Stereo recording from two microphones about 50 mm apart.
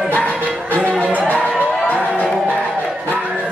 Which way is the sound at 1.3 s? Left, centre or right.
Left.